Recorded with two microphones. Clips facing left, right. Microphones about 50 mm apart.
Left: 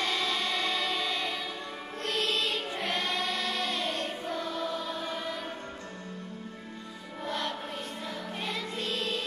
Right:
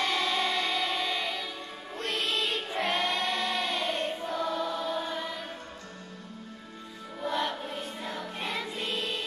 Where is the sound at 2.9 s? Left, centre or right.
Right.